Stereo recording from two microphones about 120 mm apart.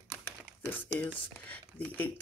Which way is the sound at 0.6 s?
15° left (ahead or behind).